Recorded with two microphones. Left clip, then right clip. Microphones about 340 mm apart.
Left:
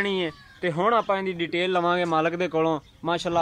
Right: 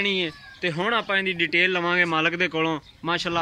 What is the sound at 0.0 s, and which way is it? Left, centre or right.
Speech, left.